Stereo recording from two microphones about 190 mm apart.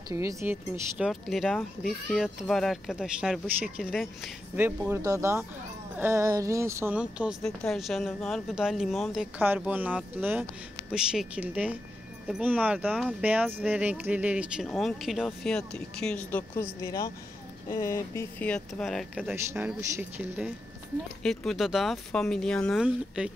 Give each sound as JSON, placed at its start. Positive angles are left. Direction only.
{"t": 0.1, "sound": "speech", "side_deg": -15}
{"t": 0.9, "sound": "speech", "side_deg": 0}